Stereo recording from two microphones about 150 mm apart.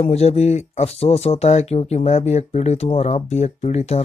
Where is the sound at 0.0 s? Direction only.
45° left (ahead or behind).